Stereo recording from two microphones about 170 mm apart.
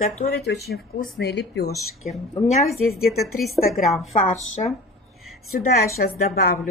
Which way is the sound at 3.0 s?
65° left (ahead or behind).